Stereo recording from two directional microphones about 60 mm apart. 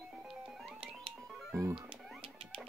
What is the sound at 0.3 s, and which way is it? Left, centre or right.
Music, centre.